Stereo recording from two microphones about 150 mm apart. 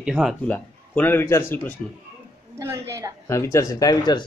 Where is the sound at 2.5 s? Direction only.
20° right (ahead or behind).